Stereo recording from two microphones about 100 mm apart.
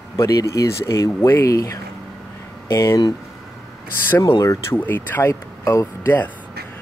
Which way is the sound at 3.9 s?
20° left (ahead or behind).